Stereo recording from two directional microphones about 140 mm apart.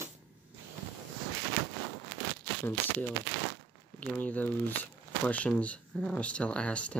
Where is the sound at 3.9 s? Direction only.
10° left (ahead or behind).